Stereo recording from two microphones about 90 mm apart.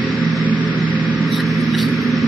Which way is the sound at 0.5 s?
15° right (ahead or behind).